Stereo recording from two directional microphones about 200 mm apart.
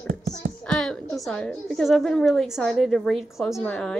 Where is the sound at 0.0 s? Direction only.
45° right (ahead or behind).